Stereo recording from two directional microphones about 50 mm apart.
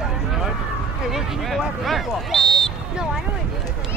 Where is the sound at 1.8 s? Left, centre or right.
Centre.